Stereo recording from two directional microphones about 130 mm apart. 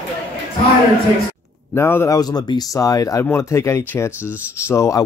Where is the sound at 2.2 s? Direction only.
30° left (ahead or behind).